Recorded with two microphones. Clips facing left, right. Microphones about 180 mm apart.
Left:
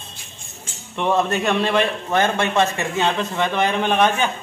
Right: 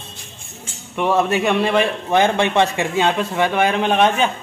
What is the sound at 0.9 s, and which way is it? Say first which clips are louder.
A man's voice: right 2 dB; 5° right (ahead or behind).